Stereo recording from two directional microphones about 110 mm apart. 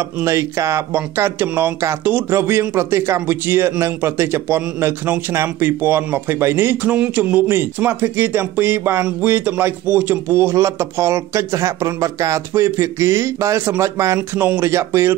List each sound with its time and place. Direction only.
0.0 s a man's voice: 25° right (ahead or behind)